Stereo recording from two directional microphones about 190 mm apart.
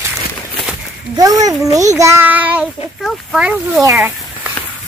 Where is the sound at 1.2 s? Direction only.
20° right (ahead or behind).